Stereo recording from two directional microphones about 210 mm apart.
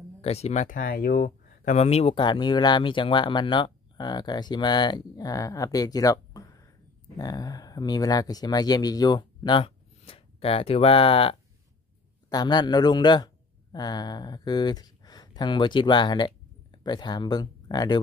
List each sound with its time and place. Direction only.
0.2 s speech: 30° left (ahead or behind)